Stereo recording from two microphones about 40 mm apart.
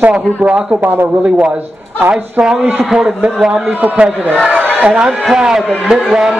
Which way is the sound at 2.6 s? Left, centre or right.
Right.